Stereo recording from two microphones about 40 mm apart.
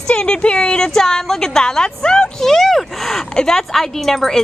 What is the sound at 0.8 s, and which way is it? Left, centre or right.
Speech, centre.